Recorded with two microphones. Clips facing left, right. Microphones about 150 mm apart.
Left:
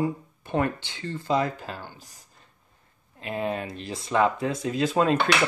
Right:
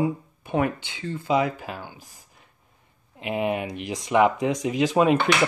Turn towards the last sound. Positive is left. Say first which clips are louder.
# right 3 dB
turn(degrees=-15)  # may be behind; listen again after turning